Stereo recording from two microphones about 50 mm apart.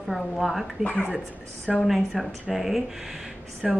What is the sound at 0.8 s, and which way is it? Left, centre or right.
Speech, left.